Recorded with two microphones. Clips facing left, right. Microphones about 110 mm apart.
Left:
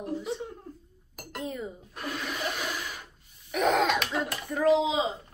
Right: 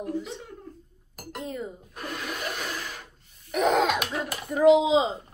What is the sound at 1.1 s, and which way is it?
Chink, centre (ahead or behind).